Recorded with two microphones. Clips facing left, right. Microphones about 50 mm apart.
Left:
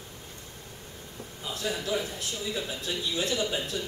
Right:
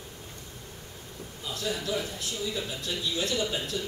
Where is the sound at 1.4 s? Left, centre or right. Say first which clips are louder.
Even; centre.